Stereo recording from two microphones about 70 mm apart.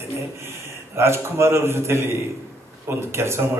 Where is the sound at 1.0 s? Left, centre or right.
Right.